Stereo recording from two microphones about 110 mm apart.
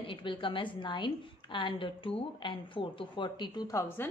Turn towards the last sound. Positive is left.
turn(degrees=20)  # may be behind; listen again after turning